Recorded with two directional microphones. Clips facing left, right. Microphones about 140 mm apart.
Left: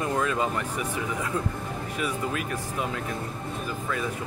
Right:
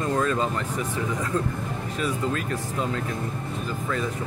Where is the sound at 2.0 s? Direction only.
15° left (ahead or behind).